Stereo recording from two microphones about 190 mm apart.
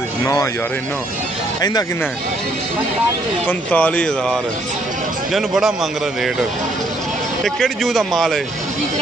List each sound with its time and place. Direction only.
0.2 s speech: 15° left (ahead or behind)
3.4 s speech: 5° left (ahead or behind)
5.3 s speech: centre (ahead or behind)
7.4 s speech: centre (ahead or behind)